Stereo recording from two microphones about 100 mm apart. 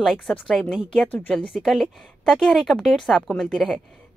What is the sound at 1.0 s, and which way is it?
Speech, 15° left (ahead or behind).